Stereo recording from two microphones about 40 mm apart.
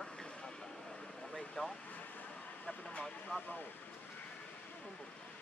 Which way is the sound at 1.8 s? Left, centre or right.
Left.